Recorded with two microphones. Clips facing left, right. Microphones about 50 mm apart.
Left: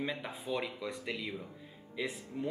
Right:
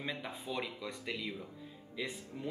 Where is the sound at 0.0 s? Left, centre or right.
Centre.